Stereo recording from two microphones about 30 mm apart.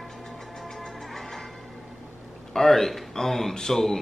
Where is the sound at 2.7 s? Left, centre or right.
Centre.